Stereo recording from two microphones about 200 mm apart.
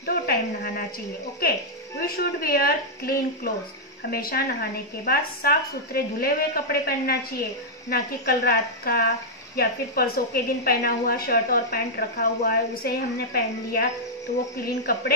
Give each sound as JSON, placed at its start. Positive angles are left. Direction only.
{"t": 0.0, "sound": "speech", "side_deg": 50}
{"t": 2.0, "sound": "a woman's voice", "side_deg": 50}